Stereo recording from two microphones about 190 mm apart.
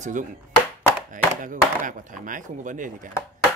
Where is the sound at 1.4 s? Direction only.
45° right (ahead or behind).